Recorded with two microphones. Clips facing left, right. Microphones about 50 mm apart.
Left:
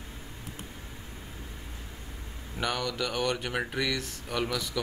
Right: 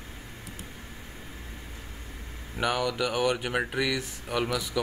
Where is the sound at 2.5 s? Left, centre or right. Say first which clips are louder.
Right 4 dB; centre.